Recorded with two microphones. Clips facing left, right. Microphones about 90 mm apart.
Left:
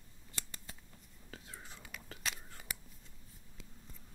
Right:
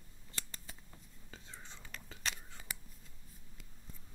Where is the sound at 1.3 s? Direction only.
5° left (ahead or behind).